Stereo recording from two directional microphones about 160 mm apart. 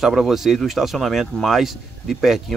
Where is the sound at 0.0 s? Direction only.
Centre (ahead or behind).